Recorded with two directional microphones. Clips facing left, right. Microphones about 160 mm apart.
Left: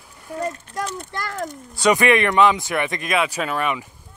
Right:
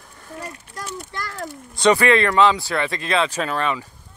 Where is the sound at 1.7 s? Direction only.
10° left (ahead or behind).